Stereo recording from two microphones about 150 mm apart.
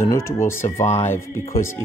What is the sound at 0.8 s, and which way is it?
Speech, 50° left (ahead or behind).